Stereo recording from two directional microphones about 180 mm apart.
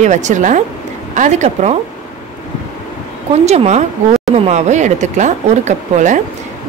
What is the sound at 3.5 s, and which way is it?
Speech, 40° right (ahead or behind).